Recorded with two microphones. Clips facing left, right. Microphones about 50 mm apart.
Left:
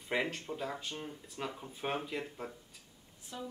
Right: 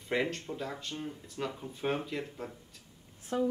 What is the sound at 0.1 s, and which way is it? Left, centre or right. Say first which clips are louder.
Speech: right 3 dB; centre.